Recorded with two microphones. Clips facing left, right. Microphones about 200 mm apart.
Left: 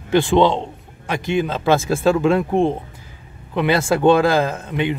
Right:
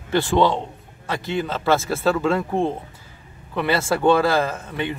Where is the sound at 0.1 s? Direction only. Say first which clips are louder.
Left 4 dB; 20° left (ahead or behind).